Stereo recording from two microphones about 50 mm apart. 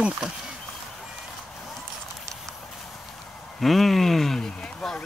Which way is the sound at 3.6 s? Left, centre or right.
Centre.